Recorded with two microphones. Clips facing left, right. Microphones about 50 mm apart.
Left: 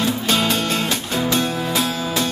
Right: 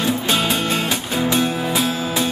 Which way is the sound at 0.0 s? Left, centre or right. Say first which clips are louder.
Even; centre.